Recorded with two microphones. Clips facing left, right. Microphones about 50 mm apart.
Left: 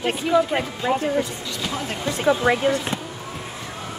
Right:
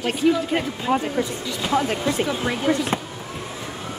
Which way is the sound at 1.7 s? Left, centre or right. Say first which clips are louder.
Right 7 dB; centre.